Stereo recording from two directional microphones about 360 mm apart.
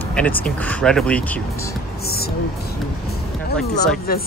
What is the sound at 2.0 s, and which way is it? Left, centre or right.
Speech, left.